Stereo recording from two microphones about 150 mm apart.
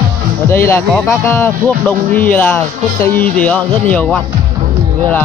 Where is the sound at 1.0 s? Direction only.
15° left (ahead or behind).